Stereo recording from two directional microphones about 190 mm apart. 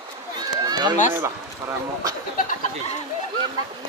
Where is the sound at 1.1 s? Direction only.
15° right (ahead or behind).